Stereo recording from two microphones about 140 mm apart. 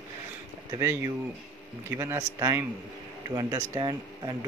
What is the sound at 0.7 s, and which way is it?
Speech, 25° right (ahead or behind).